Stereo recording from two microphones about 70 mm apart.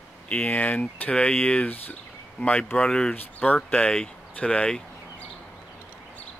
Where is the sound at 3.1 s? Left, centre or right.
Left.